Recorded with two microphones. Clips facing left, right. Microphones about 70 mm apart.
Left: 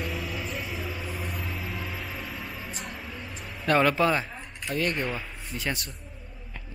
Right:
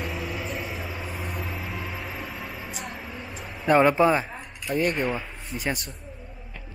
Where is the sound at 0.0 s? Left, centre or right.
Centre.